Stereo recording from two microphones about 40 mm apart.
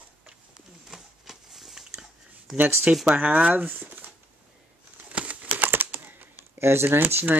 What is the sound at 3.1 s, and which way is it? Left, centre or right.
Speech, right.